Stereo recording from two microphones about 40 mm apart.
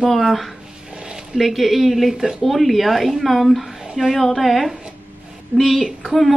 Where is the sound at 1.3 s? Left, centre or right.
Centre.